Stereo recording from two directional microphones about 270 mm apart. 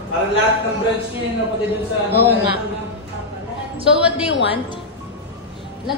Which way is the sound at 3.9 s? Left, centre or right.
Centre.